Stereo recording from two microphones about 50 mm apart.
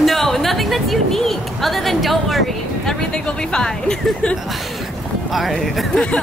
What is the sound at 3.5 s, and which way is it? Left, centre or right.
Speech, centre.